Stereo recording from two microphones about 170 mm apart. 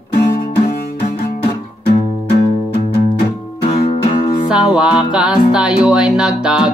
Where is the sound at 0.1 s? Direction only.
50° left (ahead or behind).